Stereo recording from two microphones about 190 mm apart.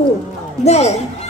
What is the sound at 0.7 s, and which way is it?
Speech, 35° left (ahead or behind).